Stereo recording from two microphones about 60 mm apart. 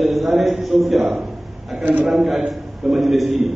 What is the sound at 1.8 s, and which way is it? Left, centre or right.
Speech, right.